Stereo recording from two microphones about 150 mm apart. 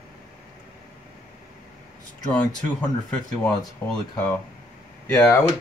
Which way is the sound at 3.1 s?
5° left (ahead or behind).